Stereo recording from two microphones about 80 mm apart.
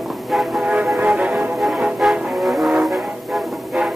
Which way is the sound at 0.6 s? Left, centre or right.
Centre.